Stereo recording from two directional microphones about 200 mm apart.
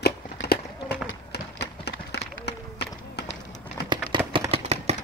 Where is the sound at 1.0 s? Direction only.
60° left (ahead or behind).